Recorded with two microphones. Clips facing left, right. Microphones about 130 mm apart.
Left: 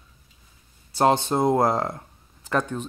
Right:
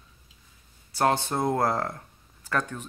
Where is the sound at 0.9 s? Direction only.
20° left (ahead or behind).